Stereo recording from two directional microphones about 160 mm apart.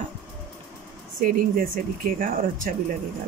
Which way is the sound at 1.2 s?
60° right (ahead or behind).